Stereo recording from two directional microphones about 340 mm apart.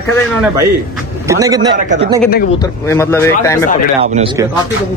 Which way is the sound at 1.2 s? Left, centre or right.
Centre.